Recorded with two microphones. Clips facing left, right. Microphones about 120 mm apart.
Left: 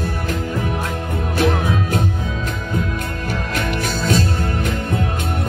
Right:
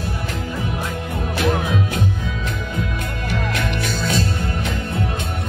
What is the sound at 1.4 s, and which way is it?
Music, 40° left (ahead or behind).